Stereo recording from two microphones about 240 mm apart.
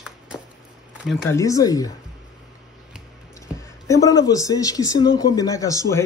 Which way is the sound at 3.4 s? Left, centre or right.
Centre.